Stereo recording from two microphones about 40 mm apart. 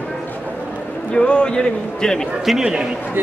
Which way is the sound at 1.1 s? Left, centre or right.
Left.